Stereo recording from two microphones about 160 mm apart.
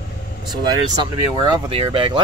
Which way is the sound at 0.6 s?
25° right (ahead or behind).